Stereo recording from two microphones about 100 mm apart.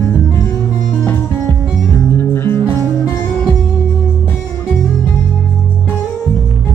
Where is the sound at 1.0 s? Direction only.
20° left (ahead or behind).